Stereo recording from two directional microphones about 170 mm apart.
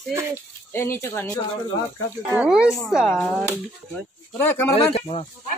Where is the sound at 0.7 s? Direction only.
15° left (ahead or behind).